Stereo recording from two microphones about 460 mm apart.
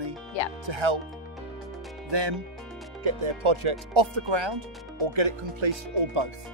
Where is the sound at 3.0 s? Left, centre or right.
Right.